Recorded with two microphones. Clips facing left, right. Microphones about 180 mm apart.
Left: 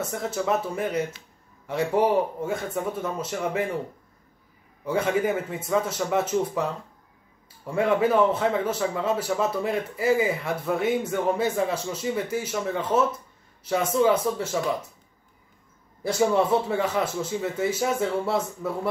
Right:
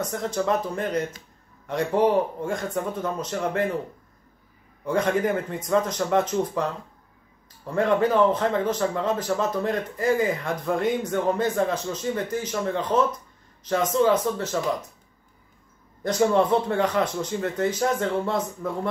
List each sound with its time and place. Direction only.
0.0 s a man's voice: 5° left (ahead or behind)
4.8 s a man's voice: 5° left (ahead or behind)
16.0 s a man's voice: 5° left (ahead or behind)